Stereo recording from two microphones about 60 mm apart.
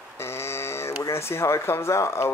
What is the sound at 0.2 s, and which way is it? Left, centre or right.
Speech, left.